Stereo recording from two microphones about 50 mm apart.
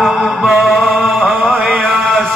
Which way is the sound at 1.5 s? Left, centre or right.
Right.